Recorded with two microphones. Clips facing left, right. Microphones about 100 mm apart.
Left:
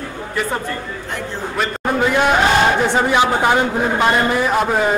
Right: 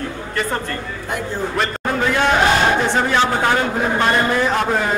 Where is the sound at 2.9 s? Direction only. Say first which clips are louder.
Left 2 dB; 15° left (ahead or behind).